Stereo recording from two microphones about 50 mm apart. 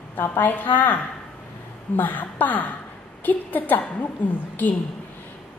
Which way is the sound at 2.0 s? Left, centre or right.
Left.